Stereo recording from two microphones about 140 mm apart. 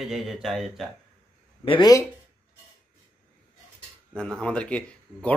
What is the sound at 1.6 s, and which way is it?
Speech, 40° left (ahead or behind).